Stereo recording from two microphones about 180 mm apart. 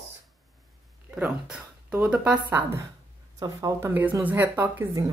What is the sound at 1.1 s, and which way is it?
Speech, 5° right (ahead or behind).